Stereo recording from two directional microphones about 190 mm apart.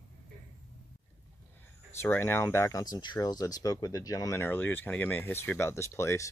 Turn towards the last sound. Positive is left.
turn(degrees=15)  # may be behind; listen again after turning